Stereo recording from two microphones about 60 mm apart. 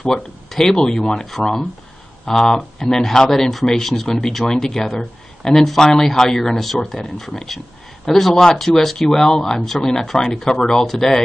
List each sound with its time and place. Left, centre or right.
0.1 s speech: centre